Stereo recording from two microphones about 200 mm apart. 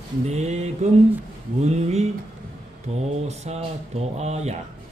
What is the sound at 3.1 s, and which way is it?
Speech, 35° right (ahead or behind).